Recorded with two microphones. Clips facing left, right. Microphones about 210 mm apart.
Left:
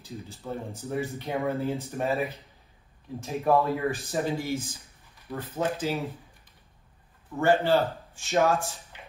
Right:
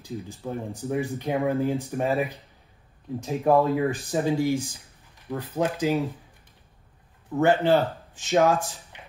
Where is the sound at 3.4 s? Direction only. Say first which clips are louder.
Right 3 dB; 15° right (ahead or behind).